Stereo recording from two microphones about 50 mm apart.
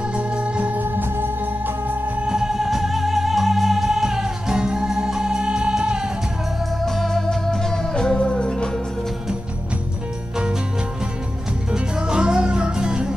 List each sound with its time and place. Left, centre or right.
0.1 s music: right
2.2 s music: centre
7.0 s music: centre
11.7 s music: centre